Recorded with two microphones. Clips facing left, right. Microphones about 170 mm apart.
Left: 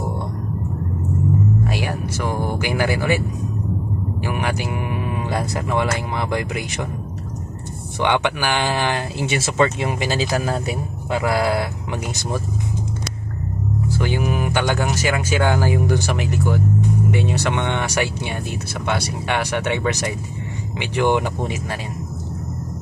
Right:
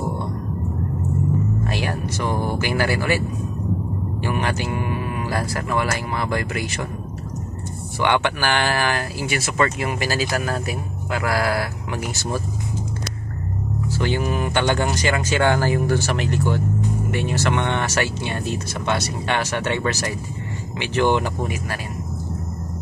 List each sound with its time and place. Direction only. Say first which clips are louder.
1.7 s speech: left 1 dB; 10° left (ahead or behind)
8.0 s speech: left 1 dB; 15° left (ahead or behind)
13.9 s speech: right 1 dB; 10° left (ahead or behind)